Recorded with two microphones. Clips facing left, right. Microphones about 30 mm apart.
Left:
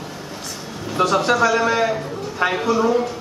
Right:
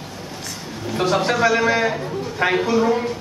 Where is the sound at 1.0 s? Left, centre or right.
Centre.